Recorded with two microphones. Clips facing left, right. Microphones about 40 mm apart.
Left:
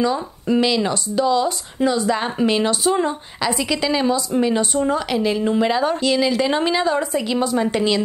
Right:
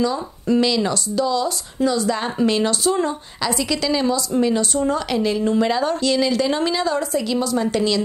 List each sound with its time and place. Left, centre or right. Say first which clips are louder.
0.0 s speech: left 1 dB; centre